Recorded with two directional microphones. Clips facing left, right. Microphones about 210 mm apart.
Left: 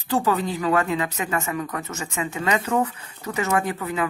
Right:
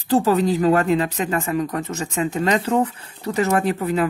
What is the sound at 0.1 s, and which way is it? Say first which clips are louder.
Speech: right 5 dB; 40° right (ahead or behind).